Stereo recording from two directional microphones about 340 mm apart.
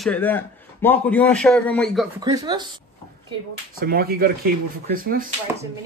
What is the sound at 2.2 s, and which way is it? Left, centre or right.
Speech, centre.